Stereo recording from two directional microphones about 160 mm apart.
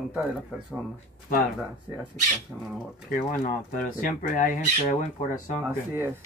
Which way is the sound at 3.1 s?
60° left (ahead or behind).